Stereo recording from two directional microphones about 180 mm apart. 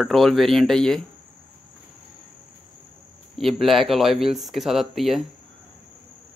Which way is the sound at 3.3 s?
Centre (ahead or behind).